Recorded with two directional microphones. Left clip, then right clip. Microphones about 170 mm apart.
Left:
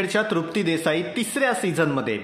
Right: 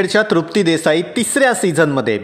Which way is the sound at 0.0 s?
35° right (ahead or behind).